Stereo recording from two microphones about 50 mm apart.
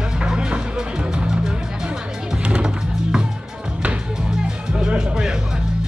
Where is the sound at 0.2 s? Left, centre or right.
Centre.